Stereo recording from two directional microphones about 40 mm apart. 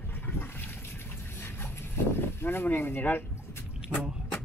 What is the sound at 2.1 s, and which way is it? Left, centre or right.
Speech, left.